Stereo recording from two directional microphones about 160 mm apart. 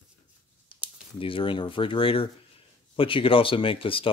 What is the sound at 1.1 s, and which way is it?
Speech, 35° left (ahead or behind).